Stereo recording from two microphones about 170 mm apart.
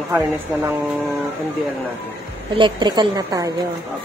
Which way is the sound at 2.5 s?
25° right (ahead or behind).